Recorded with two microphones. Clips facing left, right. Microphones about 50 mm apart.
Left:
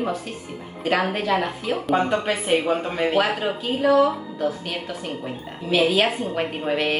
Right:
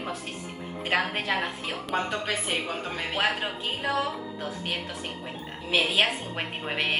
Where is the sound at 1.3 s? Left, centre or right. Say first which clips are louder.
Left 6 dB; centre.